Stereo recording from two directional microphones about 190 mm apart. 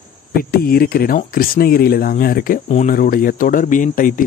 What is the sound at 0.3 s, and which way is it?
Speech, 55° left (ahead or behind).